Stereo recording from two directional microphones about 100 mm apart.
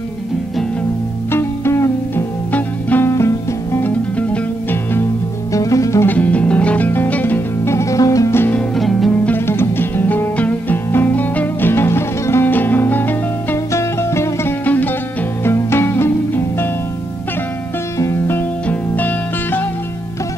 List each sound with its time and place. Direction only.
1.3 s music: 25° left (ahead or behind)
3.1 s music: 30° left (ahead or behind)
5.5 s music: 35° left (ahead or behind)
6.0 s music: 15° left (ahead or behind); by 8.4 s 35° left (ahead or behind)
8.4 s music: 15° left (ahead or behind)
8.7 s music: centre (ahead or behind)
9.2 s music: 20° left (ahead or behind)
17.9 s music: 25° left (ahead or behind)